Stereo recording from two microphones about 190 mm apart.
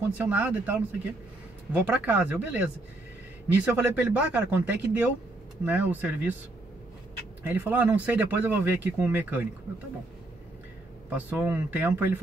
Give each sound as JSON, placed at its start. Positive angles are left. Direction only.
{"t": 0.2, "sound": "speech", "side_deg": -10}
{"t": 7.4, "sound": "speech", "side_deg": -10}
{"t": 11.1, "sound": "speech", "side_deg": -10}